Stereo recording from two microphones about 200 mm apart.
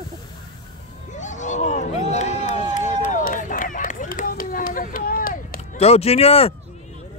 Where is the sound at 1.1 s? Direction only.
35° left (ahead or behind).